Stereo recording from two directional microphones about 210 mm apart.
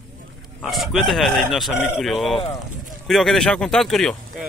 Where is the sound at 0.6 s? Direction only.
Centre (ahead or behind).